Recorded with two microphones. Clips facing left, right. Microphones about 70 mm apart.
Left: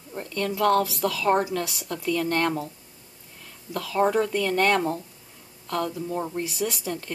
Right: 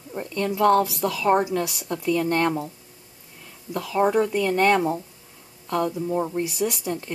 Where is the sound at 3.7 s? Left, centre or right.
Centre.